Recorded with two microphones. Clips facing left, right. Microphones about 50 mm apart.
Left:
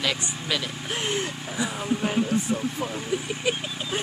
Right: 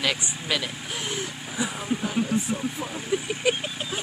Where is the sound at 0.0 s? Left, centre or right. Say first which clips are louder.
Even; centre.